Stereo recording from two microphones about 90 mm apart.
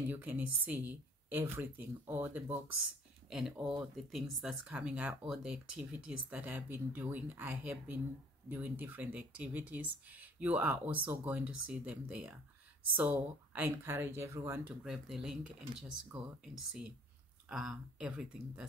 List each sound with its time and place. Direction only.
0.1 s speech: 20° right (ahead or behind)
3.3 s speech: 5° right (ahead or behind)
13.7 s speech: 30° right (ahead or behind)
14.8 s speech: 5° right (ahead or behind)
17.5 s speech: 10° right (ahead or behind)